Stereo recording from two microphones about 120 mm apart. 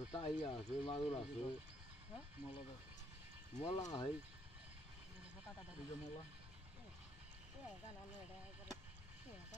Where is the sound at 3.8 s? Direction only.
35° left (ahead or behind).